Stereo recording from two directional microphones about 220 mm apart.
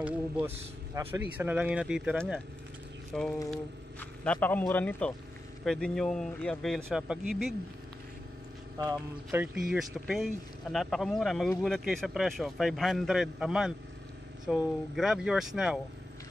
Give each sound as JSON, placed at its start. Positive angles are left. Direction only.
{"t": 1.0, "sound": "speech", "side_deg": -15}
{"t": 8.7, "sound": "speech", "side_deg": -15}